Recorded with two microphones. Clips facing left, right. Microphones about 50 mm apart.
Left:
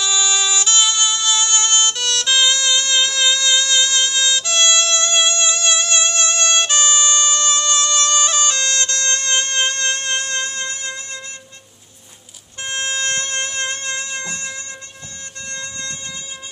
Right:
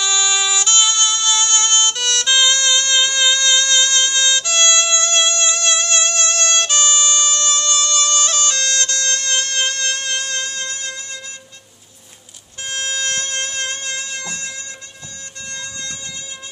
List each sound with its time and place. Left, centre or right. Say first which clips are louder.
0.0 s music: right 1 dB; centre
5.9 s music: even; centre
8.8 s music: even; left
12.6 s music: left 1 dB; left